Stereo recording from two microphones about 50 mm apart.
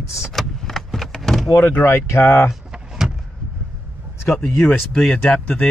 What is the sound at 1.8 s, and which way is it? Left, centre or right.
Speech, left.